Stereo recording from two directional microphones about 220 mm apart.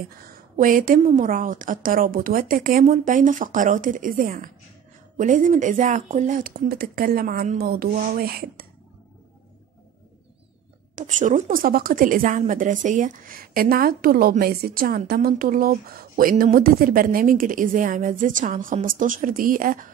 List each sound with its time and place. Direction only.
0.2 s a woman's voice: 40° right (ahead or behind)
11.0 s a woman's voice: 35° right (ahead or behind)